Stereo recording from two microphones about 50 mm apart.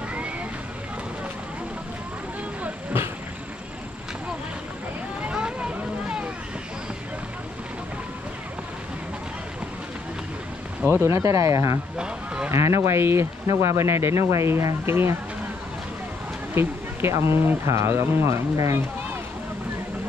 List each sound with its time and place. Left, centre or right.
5.2 s vehicle: right
10.9 s speech: right
12.4 s speech: right
13.0 s speech: right
16.5 s speech: right
17.6 s speech: right